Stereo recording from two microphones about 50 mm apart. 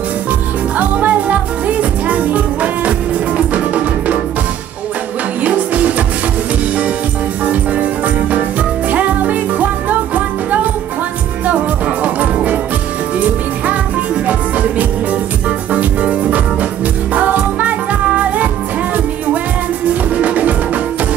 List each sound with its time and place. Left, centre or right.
0.7 s music: right
5.4 s music: right
7.4 s music: right
12.0 s music: right
14.2 s music: right
20.2 s music: right